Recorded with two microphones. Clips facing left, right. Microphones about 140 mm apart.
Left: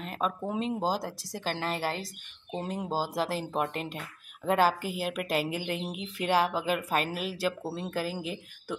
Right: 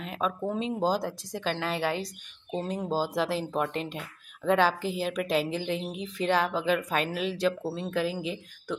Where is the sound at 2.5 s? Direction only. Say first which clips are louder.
Right 3 dB; 10° left (ahead or behind).